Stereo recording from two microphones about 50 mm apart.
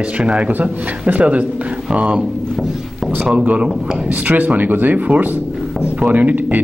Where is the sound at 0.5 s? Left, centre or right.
Right.